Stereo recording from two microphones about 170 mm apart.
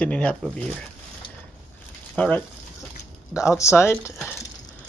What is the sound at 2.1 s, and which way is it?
Speech, 5° left (ahead or behind).